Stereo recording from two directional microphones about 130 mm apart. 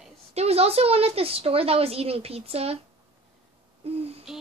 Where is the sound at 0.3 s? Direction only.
55° right (ahead or behind).